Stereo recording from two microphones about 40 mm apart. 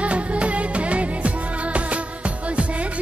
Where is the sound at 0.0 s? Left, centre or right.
Right.